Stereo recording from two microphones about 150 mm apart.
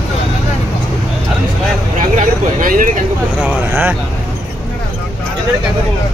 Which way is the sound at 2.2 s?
60° right (ahead or behind).